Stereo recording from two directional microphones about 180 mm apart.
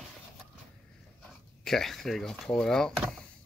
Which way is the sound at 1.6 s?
Centre (ahead or behind).